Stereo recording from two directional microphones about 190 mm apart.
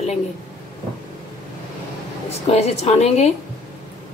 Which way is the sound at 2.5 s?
35° left (ahead or behind).